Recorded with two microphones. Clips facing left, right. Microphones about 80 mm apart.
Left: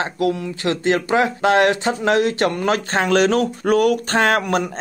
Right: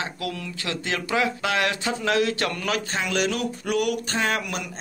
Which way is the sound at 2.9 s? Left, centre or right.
Left.